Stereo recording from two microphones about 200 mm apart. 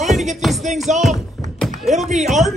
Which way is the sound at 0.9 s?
35° right (ahead or behind).